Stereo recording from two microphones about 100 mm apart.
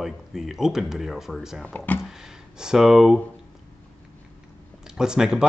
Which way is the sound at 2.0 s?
5° right (ahead or behind).